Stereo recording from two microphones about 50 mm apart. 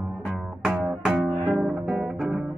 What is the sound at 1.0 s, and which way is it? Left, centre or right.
Music, centre.